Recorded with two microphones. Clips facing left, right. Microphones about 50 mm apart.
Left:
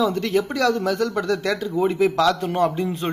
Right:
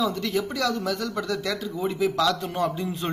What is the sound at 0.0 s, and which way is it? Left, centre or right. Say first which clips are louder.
Speech: left 5 dB; left.